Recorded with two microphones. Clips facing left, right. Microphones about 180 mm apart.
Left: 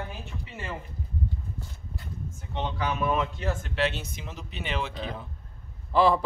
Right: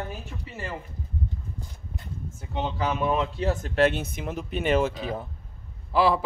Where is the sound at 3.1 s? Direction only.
35° right (ahead or behind).